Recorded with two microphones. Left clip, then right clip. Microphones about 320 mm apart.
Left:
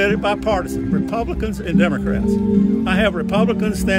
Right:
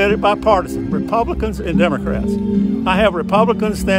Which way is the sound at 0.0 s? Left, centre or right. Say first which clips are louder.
Right 4 dB; centre.